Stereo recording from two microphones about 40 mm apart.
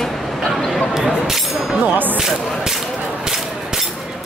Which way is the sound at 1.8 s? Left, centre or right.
Right.